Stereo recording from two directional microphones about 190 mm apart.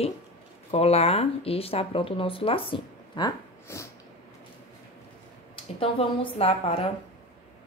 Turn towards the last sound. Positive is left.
turn(degrees=30)  # may be behind; listen again after turning